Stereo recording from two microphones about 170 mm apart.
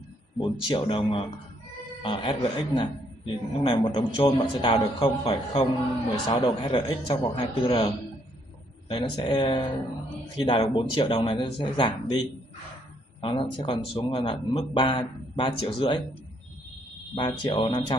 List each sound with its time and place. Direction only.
0.7 s a man's voice: 30° left (ahead or behind)
8.9 s a man's voice: 25° left (ahead or behind)
17.1 s speech: 30° left (ahead or behind)